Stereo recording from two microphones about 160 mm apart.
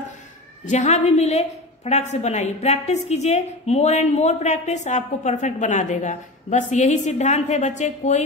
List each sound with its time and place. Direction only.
0.7 s a woman's voice: 45° left (ahead or behind)